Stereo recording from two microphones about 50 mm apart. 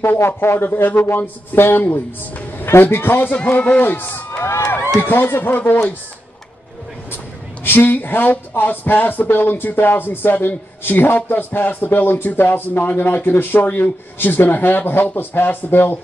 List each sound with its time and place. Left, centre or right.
0.0 s a man's voice: left
7.6 s speech: left